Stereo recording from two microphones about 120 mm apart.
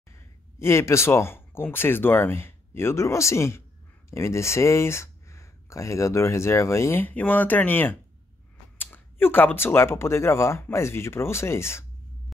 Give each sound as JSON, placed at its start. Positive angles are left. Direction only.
{"t": 0.1, "sound": "speech", "side_deg": 20}